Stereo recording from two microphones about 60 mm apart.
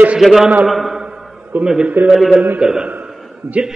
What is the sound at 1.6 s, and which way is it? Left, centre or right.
A man's voice, centre.